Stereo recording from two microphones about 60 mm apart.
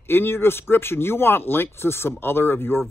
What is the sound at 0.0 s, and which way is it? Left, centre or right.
Speech, left.